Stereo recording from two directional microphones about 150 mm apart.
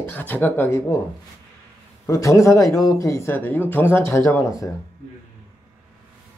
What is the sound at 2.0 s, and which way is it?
Speech, 20° left (ahead or behind).